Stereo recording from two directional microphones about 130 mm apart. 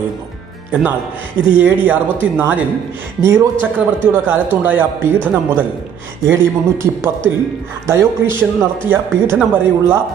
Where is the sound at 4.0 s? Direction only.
15° right (ahead or behind).